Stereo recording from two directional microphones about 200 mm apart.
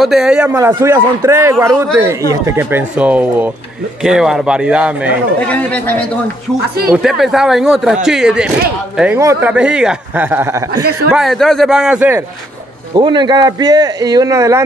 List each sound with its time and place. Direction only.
0.0 s a man's voice: centre (ahead or behind)
5.5 s a man's voice: 5° left (ahead or behind)
12.9 s a man's voice: 20° right (ahead or behind)